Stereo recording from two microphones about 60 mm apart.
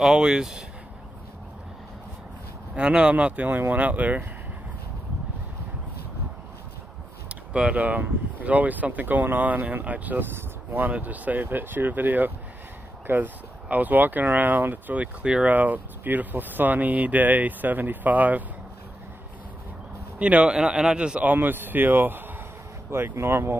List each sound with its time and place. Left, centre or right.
0.0 s a man's voice: centre
2.7 s speech: centre
3.4 s speech: right
7.2 s a sound: centre
7.7 s speech: right
20.2 s a man's voice: right
21.3 s a man's voice: right